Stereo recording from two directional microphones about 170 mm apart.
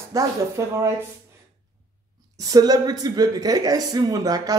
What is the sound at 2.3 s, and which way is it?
Speech, 20° right (ahead or behind).